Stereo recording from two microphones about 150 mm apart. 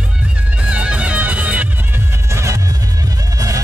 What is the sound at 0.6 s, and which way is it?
Music, 10° right (ahead or behind).